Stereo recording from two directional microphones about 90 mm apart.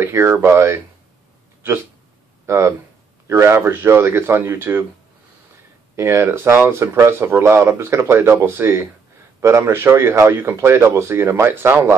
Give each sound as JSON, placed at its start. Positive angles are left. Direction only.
{"t": 0.0, "sound": "speech", "side_deg": -25}
{"t": 2.4, "sound": "speech", "side_deg": -30}
{"t": 5.9, "sound": "speech", "side_deg": -30}